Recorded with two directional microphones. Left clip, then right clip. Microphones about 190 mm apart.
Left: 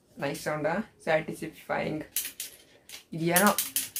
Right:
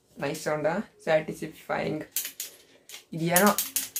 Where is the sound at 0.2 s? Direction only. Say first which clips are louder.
Right 2 dB; centre (ahead or behind).